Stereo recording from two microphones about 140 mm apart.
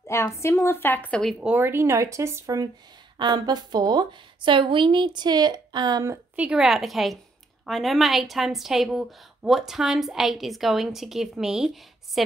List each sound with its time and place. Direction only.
0.0 s a woman's voice: 20° left (ahead or behind)
1.4 s a woman's voice: 15° right (ahead or behind)
6.3 s a woman's voice: 10° right (ahead or behind)